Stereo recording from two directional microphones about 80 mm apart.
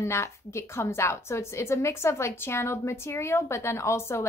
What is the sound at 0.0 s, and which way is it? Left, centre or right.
A woman's voice, left.